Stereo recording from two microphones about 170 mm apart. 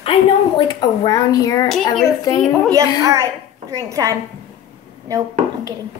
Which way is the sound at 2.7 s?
20° right (ahead or behind).